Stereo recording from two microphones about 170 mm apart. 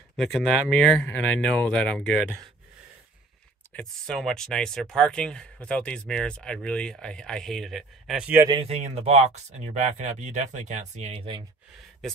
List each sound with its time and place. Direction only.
0.1 s speech: centre (ahead or behind)
3.7 s speech: centre (ahead or behind)
8.5 s speech: 35° right (ahead or behind)